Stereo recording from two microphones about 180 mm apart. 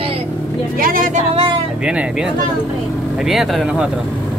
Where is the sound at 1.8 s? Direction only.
5° right (ahead or behind).